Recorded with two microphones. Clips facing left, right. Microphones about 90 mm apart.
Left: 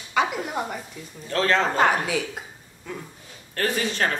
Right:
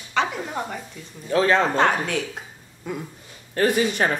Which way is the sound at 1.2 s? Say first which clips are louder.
Right 3 dB; 15° right (ahead or behind).